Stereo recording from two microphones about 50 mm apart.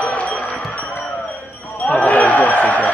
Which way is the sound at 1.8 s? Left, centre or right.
Left.